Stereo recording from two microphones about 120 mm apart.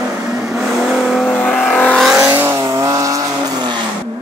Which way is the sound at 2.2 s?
20° right (ahead or behind).